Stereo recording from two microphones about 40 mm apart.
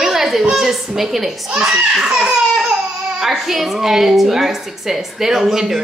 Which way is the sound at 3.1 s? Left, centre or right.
Centre.